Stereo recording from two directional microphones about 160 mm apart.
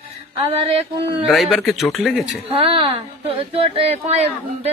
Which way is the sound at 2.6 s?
35° right (ahead or behind).